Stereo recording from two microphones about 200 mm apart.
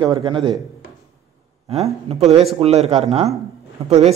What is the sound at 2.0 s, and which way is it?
A man's voice, 30° right (ahead or behind).